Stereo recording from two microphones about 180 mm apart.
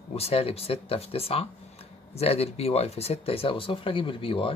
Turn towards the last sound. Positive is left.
turn(degrees=30)  # may be behind; listen again after turning